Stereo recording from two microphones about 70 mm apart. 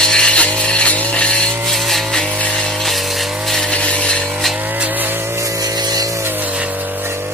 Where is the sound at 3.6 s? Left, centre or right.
Centre.